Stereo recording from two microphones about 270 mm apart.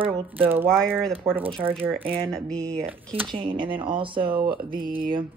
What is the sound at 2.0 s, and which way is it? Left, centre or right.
Speech, centre.